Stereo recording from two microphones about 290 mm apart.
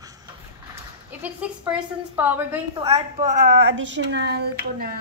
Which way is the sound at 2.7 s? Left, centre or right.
Centre.